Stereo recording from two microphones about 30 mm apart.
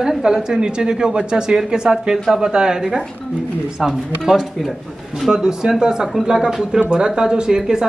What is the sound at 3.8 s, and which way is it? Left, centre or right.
Speech, centre.